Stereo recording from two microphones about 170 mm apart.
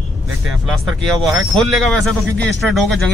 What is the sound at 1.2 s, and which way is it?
Speech, centre (ahead or behind).